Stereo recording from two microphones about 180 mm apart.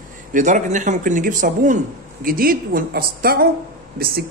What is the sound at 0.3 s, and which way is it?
Speech, 45° right (ahead or behind).